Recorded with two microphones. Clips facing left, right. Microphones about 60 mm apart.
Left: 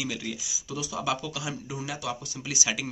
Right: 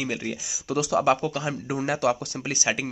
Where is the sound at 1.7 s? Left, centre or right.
Right.